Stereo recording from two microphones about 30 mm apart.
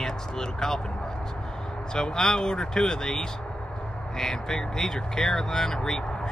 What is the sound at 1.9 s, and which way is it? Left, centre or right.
Speech, left.